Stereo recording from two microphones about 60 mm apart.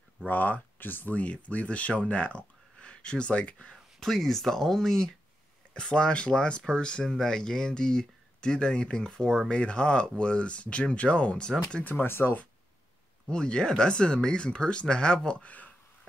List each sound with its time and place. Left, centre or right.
0.3 s speech: left
4.0 s speech: centre
11.8 s speech: left
13.3 s speech: centre